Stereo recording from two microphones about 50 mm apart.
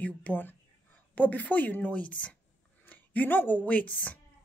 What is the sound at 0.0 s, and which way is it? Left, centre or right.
Speech, left.